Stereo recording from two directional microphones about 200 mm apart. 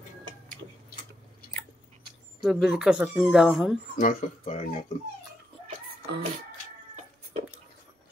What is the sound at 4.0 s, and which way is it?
Speech, 40° left (ahead or behind).